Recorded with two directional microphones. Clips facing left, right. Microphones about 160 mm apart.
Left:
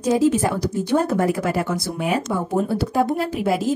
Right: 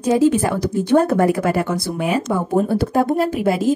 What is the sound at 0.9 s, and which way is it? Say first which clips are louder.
Speech: right 5 dB; 60° right (ahead or behind).